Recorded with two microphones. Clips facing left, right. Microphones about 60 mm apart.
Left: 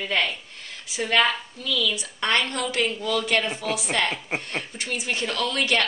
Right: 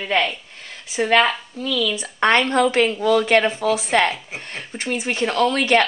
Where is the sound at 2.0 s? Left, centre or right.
Right.